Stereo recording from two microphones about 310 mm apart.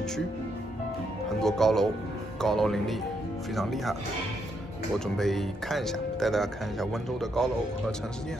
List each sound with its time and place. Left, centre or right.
1.4 s speech: centre
4.9 s speech: centre